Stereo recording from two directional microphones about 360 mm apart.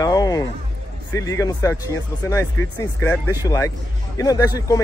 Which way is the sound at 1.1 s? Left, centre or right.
Centre.